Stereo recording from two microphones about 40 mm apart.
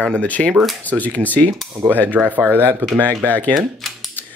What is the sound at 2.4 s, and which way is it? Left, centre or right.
Speech, right.